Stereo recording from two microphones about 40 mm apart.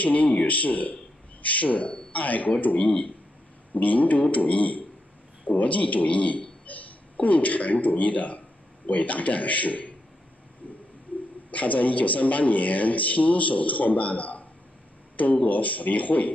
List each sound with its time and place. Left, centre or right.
0.0 s a man's voice: left
11.5 s speech: left
15.4 s speech: left